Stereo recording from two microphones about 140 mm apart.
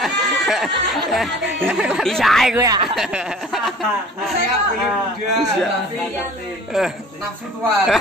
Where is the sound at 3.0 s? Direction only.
5° right (ahead or behind).